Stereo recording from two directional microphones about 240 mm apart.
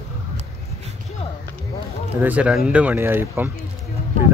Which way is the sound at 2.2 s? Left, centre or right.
Centre.